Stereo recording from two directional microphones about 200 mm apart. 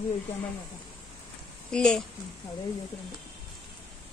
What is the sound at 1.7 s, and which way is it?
Speech, 5° left (ahead or behind).